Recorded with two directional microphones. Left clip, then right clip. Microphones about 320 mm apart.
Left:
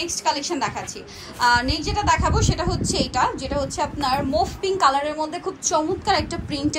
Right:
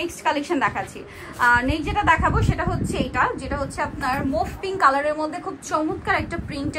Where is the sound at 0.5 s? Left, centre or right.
Centre.